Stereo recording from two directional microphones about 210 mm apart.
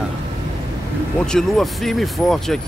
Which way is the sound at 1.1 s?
5° left (ahead or behind).